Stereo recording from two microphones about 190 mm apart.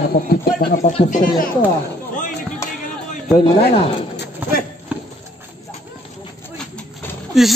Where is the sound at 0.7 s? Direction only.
40° left (ahead or behind).